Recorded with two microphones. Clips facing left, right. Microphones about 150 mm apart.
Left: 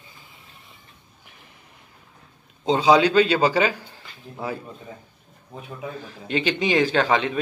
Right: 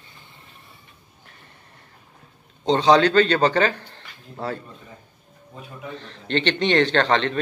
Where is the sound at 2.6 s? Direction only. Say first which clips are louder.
Right 1 dB; 10° left (ahead or behind).